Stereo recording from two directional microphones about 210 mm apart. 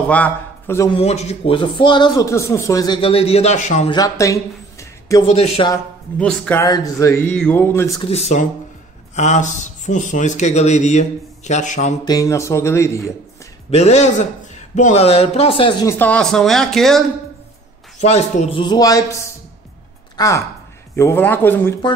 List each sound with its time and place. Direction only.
0.1 s a man's voice: 10° left (ahead or behind)
0.9 s a man's voice: 30° left (ahead or behind)
3.9 s speech: 15° left (ahead or behind)
5.3 s a man's voice: 30° left (ahead or behind)
5.7 s speech: 5° left (ahead or behind)
8.1 s a man's voice: 30° left (ahead or behind)
12.0 s speech: 15° left (ahead or behind)
13.7 s a man's voice: 30° left (ahead or behind); by 17.0 s centre (ahead or behind)
17.9 s a man's voice: 30° left (ahead or behind)
20.2 s a woman's voice: 15° left (ahead or behind)